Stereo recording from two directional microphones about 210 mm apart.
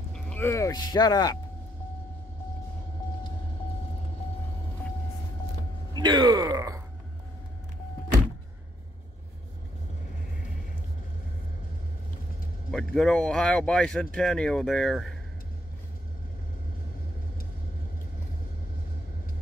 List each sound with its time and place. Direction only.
0.1 s speech: 10° left (ahead or behind)
5.9 s speech: 20° right (ahead or behind)
12.7 s speech: centre (ahead or behind)